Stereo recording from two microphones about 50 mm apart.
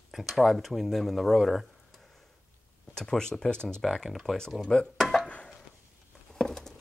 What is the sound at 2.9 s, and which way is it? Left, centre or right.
Speech, centre.